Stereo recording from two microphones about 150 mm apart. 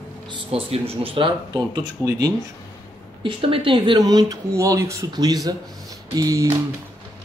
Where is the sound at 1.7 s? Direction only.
25° right (ahead or behind).